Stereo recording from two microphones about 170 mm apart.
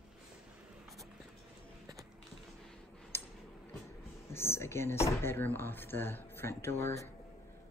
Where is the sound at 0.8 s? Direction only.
Centre (ahead or behind).